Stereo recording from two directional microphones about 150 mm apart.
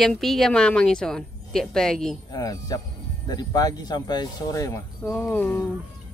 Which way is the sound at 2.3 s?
25° left (ahead or behind).